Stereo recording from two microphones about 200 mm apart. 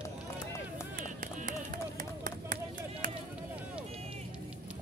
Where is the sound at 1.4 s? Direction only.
40° right (ahead or behind).